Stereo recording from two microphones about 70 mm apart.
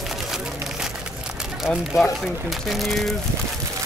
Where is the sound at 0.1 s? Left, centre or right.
Centre.